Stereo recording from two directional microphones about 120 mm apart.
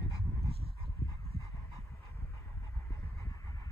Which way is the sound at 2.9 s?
30° left (ahead or behind).